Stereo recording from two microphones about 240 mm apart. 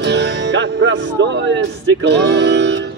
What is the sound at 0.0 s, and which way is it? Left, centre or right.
Music, right.